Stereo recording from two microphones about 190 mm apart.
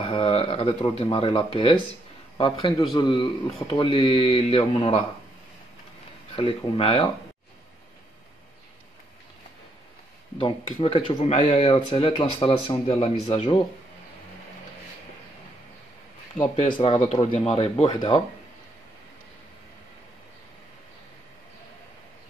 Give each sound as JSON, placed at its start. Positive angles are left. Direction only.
{"t": 0.0, "sound": "speech", "side_deg": 30}
{"t": 6.3, "sound": "speech", "side_deg": 25}
{"t": 10.3, "sound": "speech", "side_deg": 30}
{"t": 16.6, "sound": "speech", "side_deg": 25}